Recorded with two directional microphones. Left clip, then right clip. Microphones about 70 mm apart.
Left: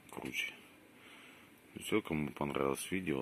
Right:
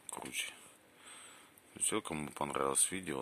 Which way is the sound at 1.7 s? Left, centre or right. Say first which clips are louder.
Left 2 dB; centre.